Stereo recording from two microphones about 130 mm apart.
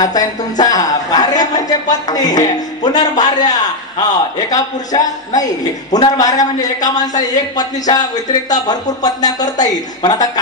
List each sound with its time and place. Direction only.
0.0 s a man's voice: 30° left (ahead or behind)